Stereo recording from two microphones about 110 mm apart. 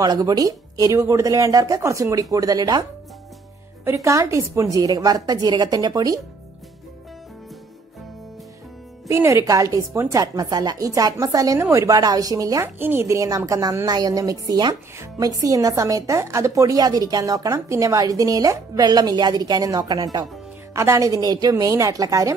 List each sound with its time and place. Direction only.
0.0 s a woman's voice: 35° right (ahead or behind)
3.8 s a woman's voice: 25° right (ahead or behind)
9.0 s a woman's voice: 25° right (ahead or behind)
12.6 s a woman's voice: 20° right (ahead or behind)